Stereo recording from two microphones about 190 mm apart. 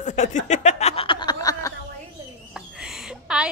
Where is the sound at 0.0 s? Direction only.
40° left (ahead or behind); by 1.7 s 20° left (ahead or behind).